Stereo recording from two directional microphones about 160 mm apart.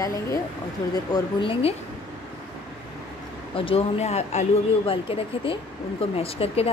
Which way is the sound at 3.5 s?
35° left (ahead or behind).